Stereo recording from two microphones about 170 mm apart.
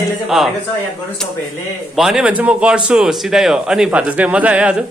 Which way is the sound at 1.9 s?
Centre (ahead or behind).